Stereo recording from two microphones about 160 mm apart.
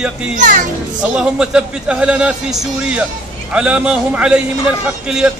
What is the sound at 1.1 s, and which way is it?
A man's voice, 5° right (ahead or behind).